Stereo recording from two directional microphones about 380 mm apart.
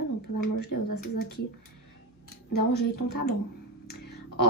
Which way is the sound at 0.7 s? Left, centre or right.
Left.